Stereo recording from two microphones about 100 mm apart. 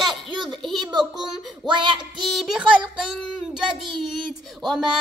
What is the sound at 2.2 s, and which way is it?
Child singing, centre (ahead or behind).